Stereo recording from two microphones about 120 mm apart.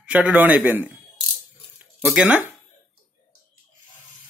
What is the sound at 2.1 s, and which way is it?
Speech, 10° right (ahead or behind).